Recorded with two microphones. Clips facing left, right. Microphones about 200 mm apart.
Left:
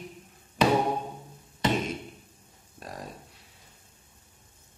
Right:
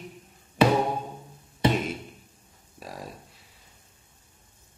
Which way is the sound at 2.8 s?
Centre (ahead or behind).